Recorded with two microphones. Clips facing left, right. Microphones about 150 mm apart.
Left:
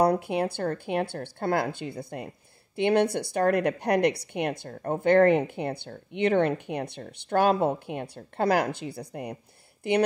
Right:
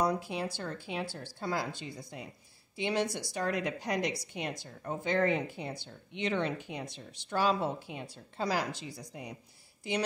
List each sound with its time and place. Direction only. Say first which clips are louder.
0.0 s speech: left 8 dB; 60° left (ahead or behind)